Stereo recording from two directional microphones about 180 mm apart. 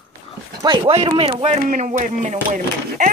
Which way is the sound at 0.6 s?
25° right (ahead or behind).